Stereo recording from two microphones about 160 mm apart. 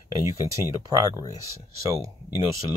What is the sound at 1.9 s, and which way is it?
Speech, 20° right (ahead or behind).